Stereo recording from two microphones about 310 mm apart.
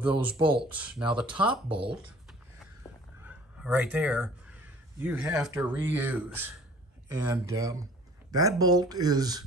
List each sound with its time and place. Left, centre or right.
0.6 s speech: centre
1.7 s speech: centre
3.3 s a sound: centre
5.0 s speech: centre